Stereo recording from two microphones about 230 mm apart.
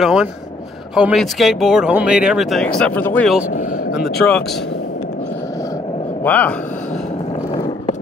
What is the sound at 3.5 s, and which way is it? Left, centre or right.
Vehicle, left.